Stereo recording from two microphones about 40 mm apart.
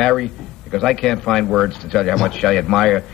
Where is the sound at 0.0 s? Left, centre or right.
Centre.